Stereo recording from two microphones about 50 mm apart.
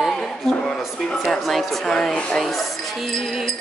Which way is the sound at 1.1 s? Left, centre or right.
Centre.